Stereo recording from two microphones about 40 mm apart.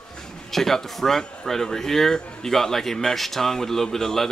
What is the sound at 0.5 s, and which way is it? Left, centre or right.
Speech, centre.